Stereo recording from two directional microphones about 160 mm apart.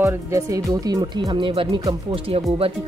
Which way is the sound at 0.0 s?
20° right (ahead or behind).